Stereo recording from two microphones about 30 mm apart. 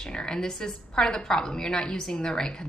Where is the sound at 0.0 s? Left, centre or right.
Left.